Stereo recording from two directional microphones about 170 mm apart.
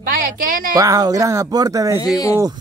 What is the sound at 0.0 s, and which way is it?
Speech, 55° right (ahead or behind).